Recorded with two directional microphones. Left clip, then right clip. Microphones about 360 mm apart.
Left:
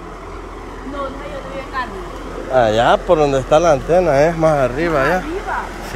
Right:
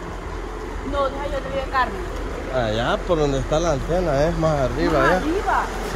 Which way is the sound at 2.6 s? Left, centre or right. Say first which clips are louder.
Left 10 dB; centre.